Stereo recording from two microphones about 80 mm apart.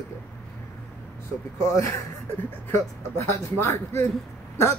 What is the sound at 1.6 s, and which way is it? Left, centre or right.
Speech, left.